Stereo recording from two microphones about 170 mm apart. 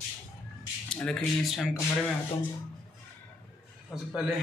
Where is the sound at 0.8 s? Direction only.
5° left (ahead or behind).